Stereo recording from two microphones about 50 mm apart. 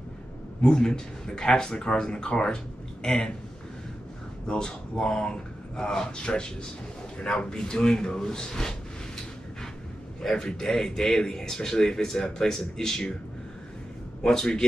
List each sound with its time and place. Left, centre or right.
0.6 s a man's voice: centre
4.5 s a man's voice: centre
10.2 s a man's voice: centre
14.2 s a man's voice: centre